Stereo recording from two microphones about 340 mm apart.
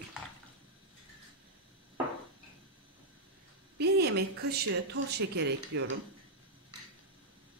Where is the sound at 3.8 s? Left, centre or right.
Right.